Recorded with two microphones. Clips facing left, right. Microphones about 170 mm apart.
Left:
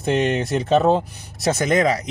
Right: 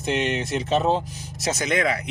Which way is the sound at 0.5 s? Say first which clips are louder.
Left 5 dB; 55° left (ahead or behind).